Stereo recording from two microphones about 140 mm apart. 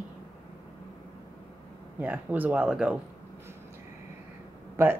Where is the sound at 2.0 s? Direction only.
10° right (ahead or behind).